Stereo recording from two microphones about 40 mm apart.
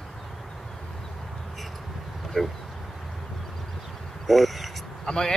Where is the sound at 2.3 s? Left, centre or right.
Centre.